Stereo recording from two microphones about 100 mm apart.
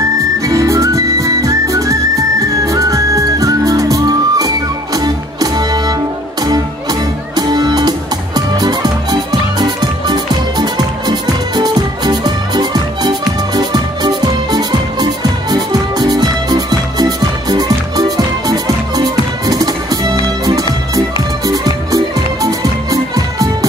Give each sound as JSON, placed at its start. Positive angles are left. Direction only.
{"t": 0.5, "sound": "music", "side_deg": -35}
{"t": 21.5, "sound": "music", "side_deg": -35}